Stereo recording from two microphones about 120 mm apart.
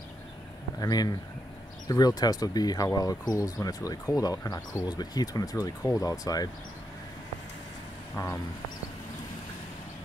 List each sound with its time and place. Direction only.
0.7 s speech: 35° left (ahead or behind)
8.2 s speech: 30° left (ahead or behind)